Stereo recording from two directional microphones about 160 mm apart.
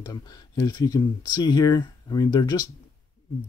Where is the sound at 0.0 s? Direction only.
25° left (ahead or behind).